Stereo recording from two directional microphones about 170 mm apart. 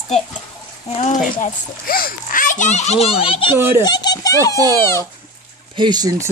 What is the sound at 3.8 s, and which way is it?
Speech, 25° left (ahead or behind).